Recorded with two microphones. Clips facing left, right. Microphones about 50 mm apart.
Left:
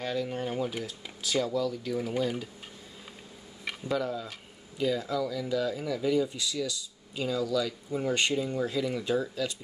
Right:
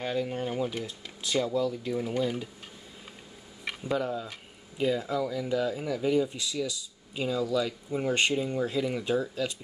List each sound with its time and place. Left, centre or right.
0.0 s speech: centre
0.4 s speech: centre
1.5 s speech: right
3.6 s a sound: centre
4.0 s speech: right